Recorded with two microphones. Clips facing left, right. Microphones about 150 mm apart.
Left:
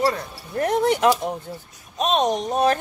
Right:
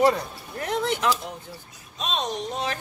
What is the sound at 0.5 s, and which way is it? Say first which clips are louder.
Speech: left 7 dB; 45° left (ahead or behind).